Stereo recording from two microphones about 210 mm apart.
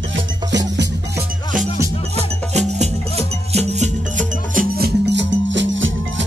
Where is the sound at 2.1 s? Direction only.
30° right (ahead or behind).